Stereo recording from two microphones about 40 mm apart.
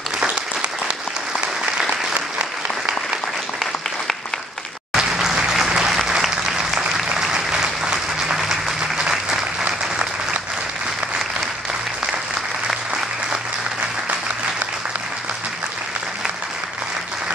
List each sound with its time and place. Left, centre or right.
4.9 s applause: centre
7.2 s applause: centre